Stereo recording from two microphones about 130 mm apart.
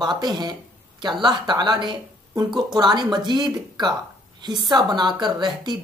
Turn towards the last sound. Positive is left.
turn(degrees=-35)  # may be behind; listen again after turning